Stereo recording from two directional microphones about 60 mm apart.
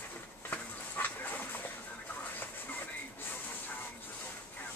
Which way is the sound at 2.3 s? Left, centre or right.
Left.